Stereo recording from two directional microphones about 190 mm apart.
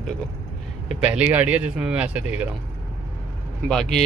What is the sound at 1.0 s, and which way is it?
Speech, 10° right (ahead or behind).